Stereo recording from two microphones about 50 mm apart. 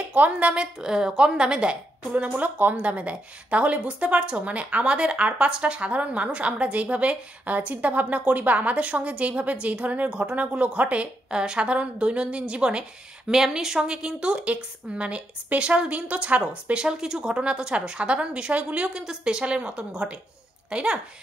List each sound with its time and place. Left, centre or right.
0.1 s speech: right
2.3 s speech: right
13.3 s speech: centre; by 18.9 s right
18.9 s a woman's voice: centre